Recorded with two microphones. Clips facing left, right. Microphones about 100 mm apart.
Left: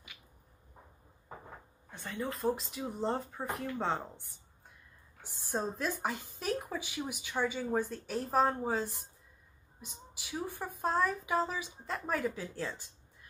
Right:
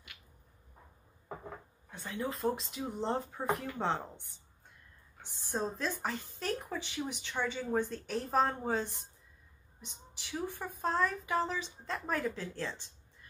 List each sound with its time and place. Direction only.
1.9 s speech: centre (ahead or behind)
5.5 s speech: 5° left (ahead or behind)